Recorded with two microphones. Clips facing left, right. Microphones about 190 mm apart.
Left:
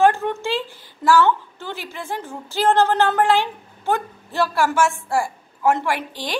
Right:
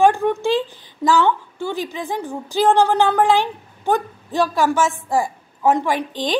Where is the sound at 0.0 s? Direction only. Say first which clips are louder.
Right 2 dB; 15° right (ahead or behind).